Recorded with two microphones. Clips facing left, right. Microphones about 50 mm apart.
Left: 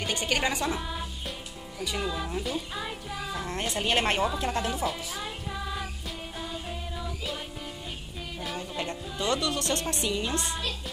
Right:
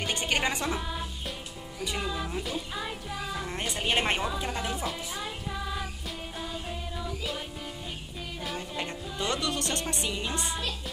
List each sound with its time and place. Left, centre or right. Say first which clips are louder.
0.1 s music: left 1 dB; right
0.7 s speech: even; centre
2.0 s music: left 2 dB; centre
3.8 s a woman's voice: left 2 dB; centre
4.6 s music: left 3 dB; centre
9.2 s speech: left 2 dB; right; by 10.7 s centre